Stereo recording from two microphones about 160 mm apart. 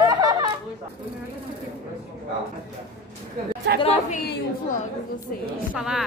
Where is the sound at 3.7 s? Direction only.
90° right.